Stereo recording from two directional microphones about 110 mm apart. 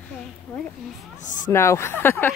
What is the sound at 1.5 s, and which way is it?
Speech, 25° left (ahead or behind).